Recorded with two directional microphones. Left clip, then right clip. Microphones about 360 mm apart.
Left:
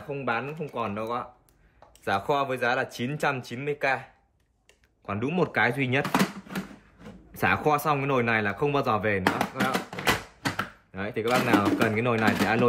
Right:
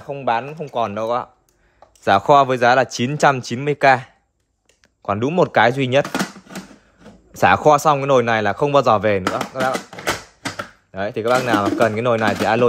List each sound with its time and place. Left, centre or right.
0.1 s speech: centre
7.3 s speech: centre
10.9 s speech: centre